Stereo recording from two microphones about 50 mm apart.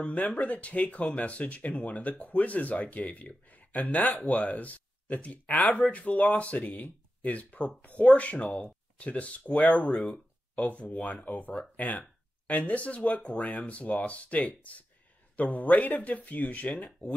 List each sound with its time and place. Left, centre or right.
0.0 s speech: left